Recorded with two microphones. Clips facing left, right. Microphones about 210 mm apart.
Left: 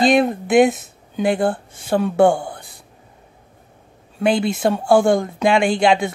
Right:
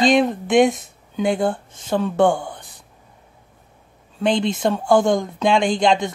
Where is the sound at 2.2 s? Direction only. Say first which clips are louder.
Left 3 dB; 10° left (ahead or behind).